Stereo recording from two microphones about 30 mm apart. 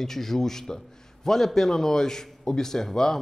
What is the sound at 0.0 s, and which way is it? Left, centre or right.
A man's voice, centre.